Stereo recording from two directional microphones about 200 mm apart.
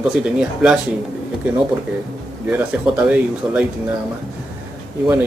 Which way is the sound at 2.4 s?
5° right (ahead or behind).